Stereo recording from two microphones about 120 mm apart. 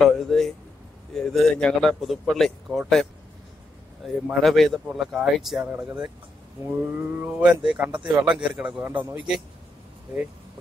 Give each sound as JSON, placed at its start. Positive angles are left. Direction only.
{"t": 0.0, "sound": "speech", "side_deg": 0}
{"t": 6.6, "sound": "speech", "side_deg": -20}
{"t": 8.8, "sound": "speech", "side_deg": -15}